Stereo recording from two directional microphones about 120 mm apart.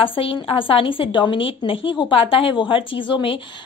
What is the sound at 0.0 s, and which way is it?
A woman's voice, 50° left (ahead or behind).